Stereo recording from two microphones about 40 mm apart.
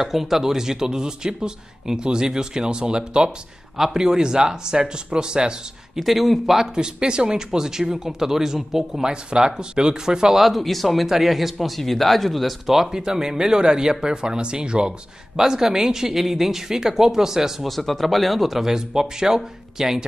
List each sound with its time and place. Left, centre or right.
0.0 s speech: centre
3.7 s speech: centre
5.9 s speech: centre
6.7 s speech: right
10.4 s speech: centre
17.6 s speech: centre